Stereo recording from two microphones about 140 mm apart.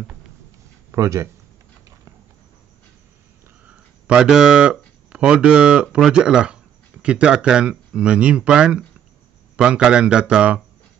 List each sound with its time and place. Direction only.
0.9 s speech: 20° right (ahead or behind)
3.6 s a man's voice: 5° right (ahead or behind)